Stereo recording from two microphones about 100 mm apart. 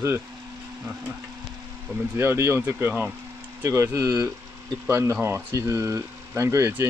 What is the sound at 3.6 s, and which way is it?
Speech, 30° right (ahead or behind).